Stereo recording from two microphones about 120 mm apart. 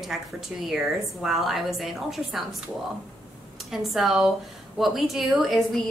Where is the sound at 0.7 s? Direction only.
Centre (ahead or behind).